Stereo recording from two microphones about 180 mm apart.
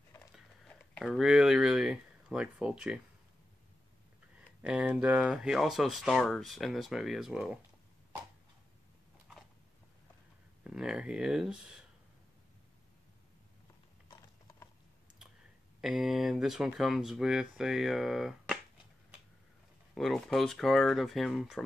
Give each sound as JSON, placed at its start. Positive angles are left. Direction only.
{"t": 0.9, "sound": "a sound", "side_deg": 0}
{"t": 4.6, "sound": "speech", "side_deg": -5}
{"t": 10.6, "sound": "speech", "side_deg": -5}
{"t": 14.0, "sound": "typing", "side_deg": 25}
{"t": 15.8, "sound": "speech", "side_deg": 0}
{"t": 19.9, "sound": "speech", "side_deg": 0}